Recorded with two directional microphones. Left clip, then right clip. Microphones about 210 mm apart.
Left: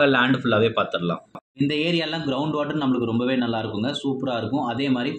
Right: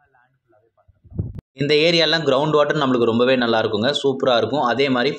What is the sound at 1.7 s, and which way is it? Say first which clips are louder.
A man's voice: right 10 dB; 30° right (ahead or behind).